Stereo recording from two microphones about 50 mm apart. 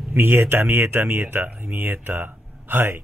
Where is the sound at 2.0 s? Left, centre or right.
Right.